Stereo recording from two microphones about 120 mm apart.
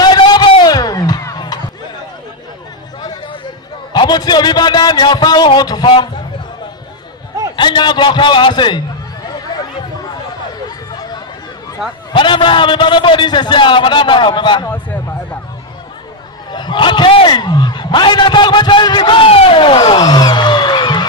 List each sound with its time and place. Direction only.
0.0 s music: 35° left (ahead or behind)
3.9 s a sound: 35° left (ahead or behind)
7.5 s a man's voice: 40° left (ahead or behind)
12.1 s a man's voice: 45° left (ahead or behind)
14.7 s a man's voice: 20° left (ahead or behind)
16.5 s a man's voice: 40° left (ahead or behind)
20.0 s a sound: 35° left (ahead or behind)